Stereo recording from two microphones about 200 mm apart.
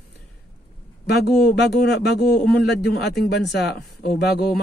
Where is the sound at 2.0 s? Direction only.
55° left (ahead or behind).